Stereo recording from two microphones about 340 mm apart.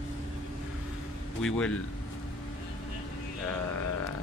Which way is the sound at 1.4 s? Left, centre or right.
Centre.